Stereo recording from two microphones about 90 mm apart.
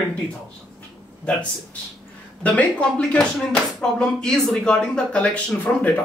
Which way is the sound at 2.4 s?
15° left (ahead or behind).